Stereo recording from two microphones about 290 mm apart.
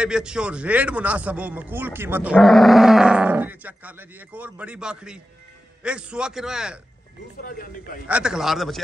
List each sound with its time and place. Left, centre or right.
0.0 s speech: centre
7.4 s speech: left
8.1 s speech: centre